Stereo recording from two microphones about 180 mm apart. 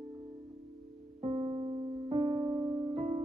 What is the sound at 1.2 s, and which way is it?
Piano, 35° right (ahead or behind).